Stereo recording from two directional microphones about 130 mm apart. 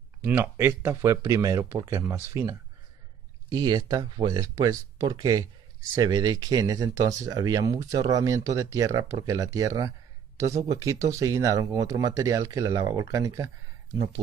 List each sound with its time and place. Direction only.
0.2 s speech: 20° right (ahead or behind)
3.5 s speech: 30° right (ahead or behind)